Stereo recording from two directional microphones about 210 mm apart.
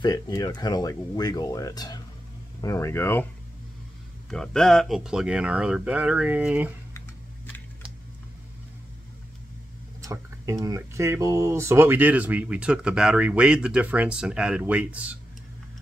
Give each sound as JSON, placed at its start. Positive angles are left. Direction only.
{"t": 0.0, "sound": "speech", "side_deg": 15}
{"t": 4.3, "sound": "speech", "side_deg": 5}
{"t": 10.0, "sound": "speech", "side_deg": -15}